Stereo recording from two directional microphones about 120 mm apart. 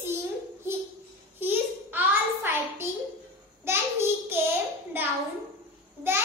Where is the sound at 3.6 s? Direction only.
20° right (ahead or behind).